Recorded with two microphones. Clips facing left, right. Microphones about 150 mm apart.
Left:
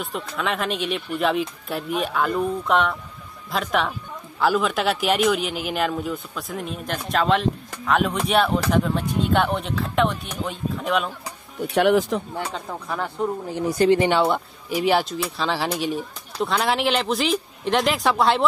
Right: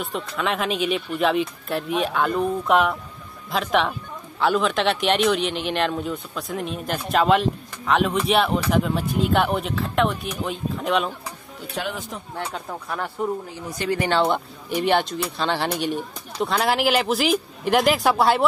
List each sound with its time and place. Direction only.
0.0 s speech: centre (ahead or behind)
11.7 s speech: 75° left (ahead or behind)
12.5 s speech: centre (ahead or behind)
13.8 s speech: 20° left (ahead or behind)
14.3 s speech: 5° left (ahead or behind)